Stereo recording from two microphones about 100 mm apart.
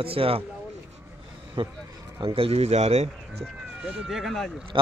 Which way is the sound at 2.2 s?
70° right (ahead or behind).